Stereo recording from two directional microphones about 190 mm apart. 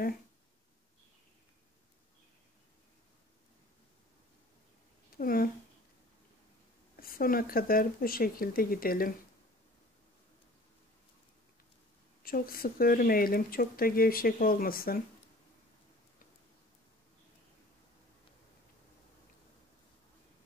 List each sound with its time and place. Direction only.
5.1 s a sound: 50° left (ahead or behind)
7.0 s speech: 50° left (ahead or behind)
12.3 s speech: 50° left (ahead or behind)